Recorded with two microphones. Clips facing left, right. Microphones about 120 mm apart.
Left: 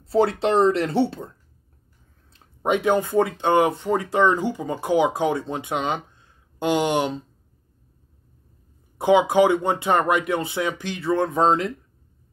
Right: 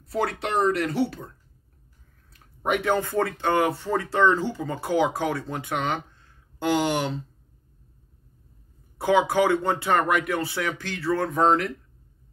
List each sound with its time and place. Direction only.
0.0 s speech: 30° left (ahead or behind)
2.3 s speech: 20° left (ahead or behind)
8.9 s speech: 20° left (ahead or behind)